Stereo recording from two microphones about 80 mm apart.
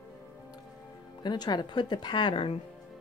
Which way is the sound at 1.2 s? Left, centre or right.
Left.